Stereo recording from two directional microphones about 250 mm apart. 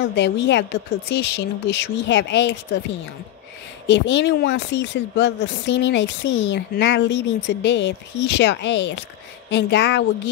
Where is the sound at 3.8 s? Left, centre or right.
Left.